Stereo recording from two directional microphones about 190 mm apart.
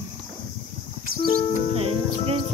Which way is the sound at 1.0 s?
50° right (ahead or behind).